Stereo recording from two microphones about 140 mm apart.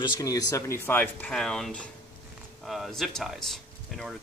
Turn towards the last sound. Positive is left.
turn(degrees=0)  # may be behind; listen again after turning